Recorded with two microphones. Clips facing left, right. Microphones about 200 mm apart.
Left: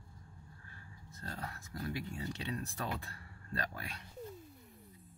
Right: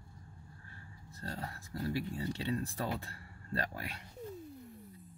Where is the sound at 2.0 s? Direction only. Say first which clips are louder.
Right 4 dB; 25° right (ahead or behind).